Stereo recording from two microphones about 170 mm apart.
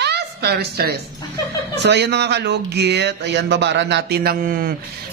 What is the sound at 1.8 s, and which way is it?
A man's voice, 85° right.